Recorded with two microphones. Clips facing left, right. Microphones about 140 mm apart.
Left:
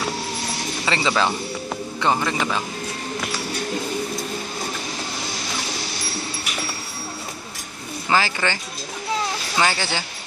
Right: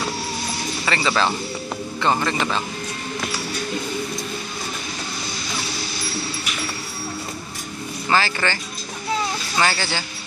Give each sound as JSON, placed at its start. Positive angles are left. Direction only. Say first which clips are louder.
{"t": 0.8, "sound": "speech", "louder": "even", "side_deg": 20}
{"t": 8.1, "sound": "speech", "louder": "even", "side_deg": 15}
{"t": 9.6, "sound": "speech", "louder": "even", "side_deg": 15}